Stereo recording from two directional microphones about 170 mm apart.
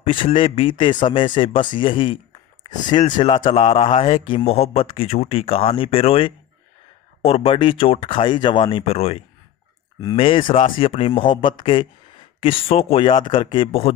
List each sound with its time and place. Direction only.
0.0 s a man's voice: 30° left (ahead or behind)